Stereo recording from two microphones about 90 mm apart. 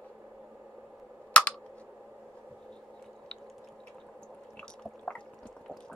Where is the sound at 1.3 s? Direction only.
15° left (ahead or behind).